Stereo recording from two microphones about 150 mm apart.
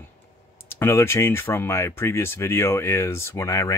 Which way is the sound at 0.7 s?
15° left (ahead or behind).